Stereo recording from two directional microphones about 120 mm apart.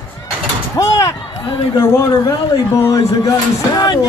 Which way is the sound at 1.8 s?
20° left (ahead or behind).